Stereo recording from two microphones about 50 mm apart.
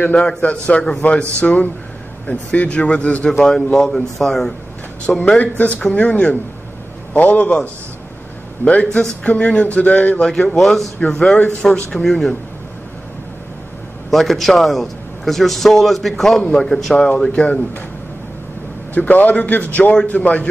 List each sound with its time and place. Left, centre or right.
0.1 s speech: centre
3.3 s a man's voice: centre
5.4 s a man's voice: left
8.6 s a man's voice: left
8.9 s a man's voice: left
10.6 s a man's voice: centre
11.0 s a man's voice: centre
14.1 s a man's voice: centre
18.9 s a man's voice: left